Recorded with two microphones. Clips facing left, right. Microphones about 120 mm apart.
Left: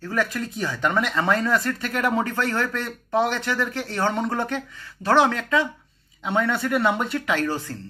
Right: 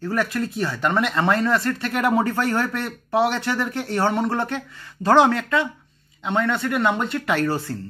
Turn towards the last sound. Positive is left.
turn(degrees=-15)  # may be behind; listen again after turning